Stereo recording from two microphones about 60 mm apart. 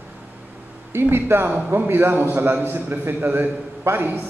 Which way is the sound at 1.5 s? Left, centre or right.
Right.